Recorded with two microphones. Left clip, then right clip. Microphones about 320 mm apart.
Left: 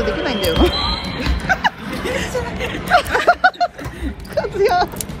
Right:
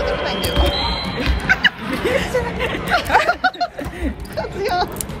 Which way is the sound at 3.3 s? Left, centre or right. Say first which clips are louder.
Left 4 dB; centre.